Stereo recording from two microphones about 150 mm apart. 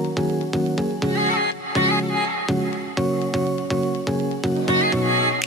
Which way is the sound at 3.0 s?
Centre (ahead or behind).